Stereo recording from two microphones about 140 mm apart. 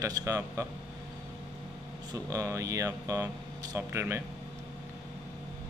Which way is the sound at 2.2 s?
20° right (ahead or behind).